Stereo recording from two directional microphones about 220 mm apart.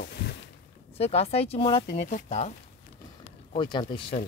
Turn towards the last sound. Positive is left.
turn(degrees=20)  # may be behind; listen again after turning